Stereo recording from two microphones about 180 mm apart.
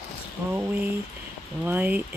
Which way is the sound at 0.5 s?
10° right (ahead or behind).